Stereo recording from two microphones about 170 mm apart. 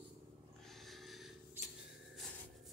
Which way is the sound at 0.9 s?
Centre (ahead or behind).